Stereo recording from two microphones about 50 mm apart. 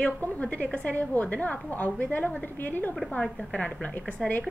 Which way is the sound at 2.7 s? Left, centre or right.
Left.